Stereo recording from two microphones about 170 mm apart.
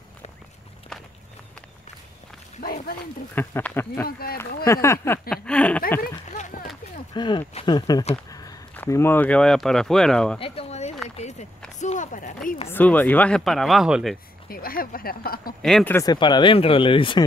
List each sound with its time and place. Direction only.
2.6 s speech: 60° left (ahead or behind)
3.3 s speech: 10° left (ahead or behind)
5.9 s a sound: 50° left (ahead or behind)
7.2 s speech: 25° left (ahead or behind)
8.3 s a sound: 20° left (ahead or behind)
8.7 s speech: 15° left (ahead or behind)
10.4 s a sound: 35° left (ahead or behind)
11.8 s speech: 45° left (ahead or behind)
12.7 s speech: 10° left (ahead or behind)
14.5 s speech: 60° left (ahead or behind)
15.6 s speech: centre (ahead or behind)
15.9 s speech: 20° left (ahead or behind)